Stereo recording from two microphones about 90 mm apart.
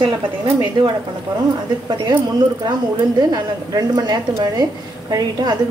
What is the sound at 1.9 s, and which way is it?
A woman's voice, 50° right (ahead or behind).